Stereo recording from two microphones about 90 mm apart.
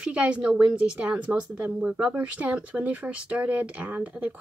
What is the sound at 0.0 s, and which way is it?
A woman's voice, 10° right (ahead or behind).